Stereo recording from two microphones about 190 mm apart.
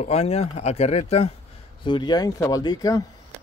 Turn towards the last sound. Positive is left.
turn(degrees=20)  # may be behind; listen again after turning